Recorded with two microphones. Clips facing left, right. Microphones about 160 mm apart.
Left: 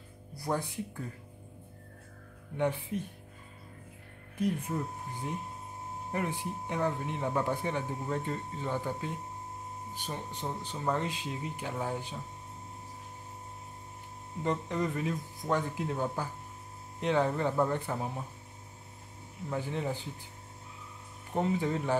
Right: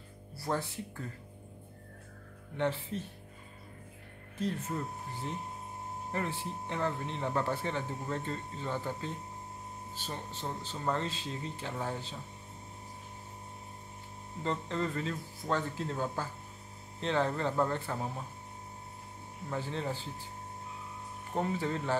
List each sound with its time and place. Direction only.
0.4 s speech: 15° left (ahead or behind)
2.5 s speech: 15° left (ahead or behind)
4.4 s speech: 15° left (ahead or behind)
14.4 s speech: 15° left (ahead or behind)
19.5 s speech: 15° left (ahead or behind)
21.4 s speech: 15° left (ahead or behind)